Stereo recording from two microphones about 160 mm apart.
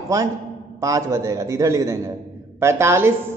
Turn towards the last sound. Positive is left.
turn(degrees=-15)  # may be behind; listen again after turning